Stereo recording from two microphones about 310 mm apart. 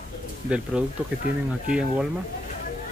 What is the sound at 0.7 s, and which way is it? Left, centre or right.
Speech, centre.